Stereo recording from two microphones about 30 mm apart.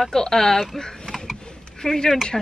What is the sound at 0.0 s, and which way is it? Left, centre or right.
Speech, centre.